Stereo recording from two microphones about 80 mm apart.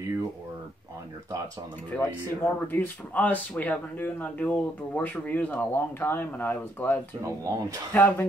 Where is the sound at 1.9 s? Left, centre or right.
Centre.